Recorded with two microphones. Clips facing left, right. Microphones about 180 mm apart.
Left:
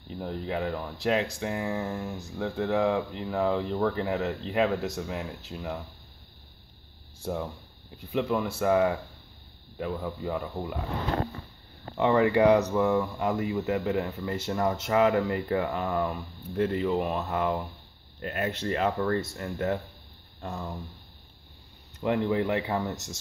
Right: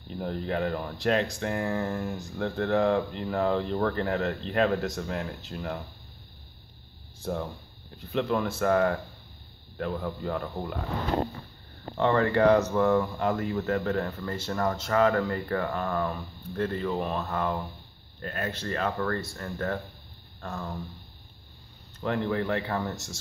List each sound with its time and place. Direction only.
0.1 s speech: centre (ahead or behind)
8.1 s speech: 5° left (ahead or behind)
12.0 s speech: 10° left (ahead or behind)
22.0 s speech: 15° left (ahead or behind)